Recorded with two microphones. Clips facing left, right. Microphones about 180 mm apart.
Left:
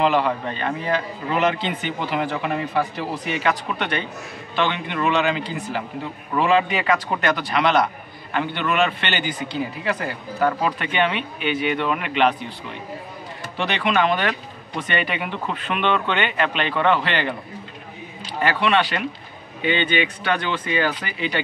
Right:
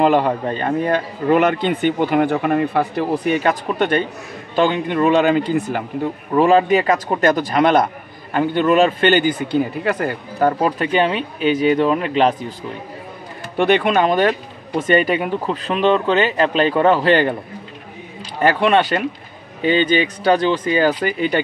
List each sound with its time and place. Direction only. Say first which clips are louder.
0.0 s a man's voice: right 4 dB; 45° right (ahead or behind)
13.6 s a man's voice: right 6 dB; 50° right (ahead or behind)
18.4 s a man's voice: right 5 dB; 45° right (ahead or behind)